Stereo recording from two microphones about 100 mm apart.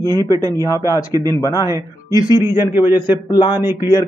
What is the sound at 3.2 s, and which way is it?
Speech, 45° left (ahead or behind).